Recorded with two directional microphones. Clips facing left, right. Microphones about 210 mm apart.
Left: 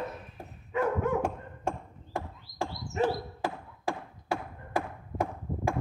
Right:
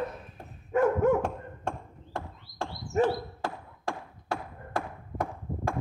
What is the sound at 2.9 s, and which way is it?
Bird, 45° right (ahead or behind).